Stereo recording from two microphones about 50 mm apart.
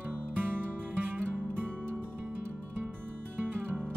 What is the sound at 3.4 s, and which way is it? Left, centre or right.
Music, right.